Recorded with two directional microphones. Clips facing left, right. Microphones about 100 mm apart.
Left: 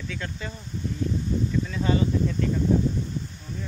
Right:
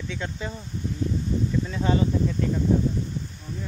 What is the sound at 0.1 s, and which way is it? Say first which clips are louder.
Speech: right 3 dB; 20° right (ahead or behind).